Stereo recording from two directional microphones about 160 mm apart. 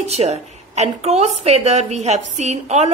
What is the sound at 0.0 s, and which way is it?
A woman's voice, 45° right (ahead or behind).